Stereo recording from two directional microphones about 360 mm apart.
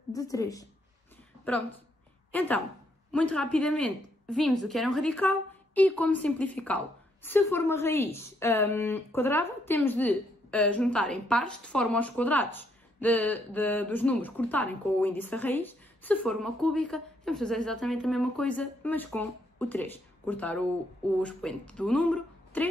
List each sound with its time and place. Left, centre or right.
0.1 s a woman's voice: centre
2.3 s a woman's voice: centre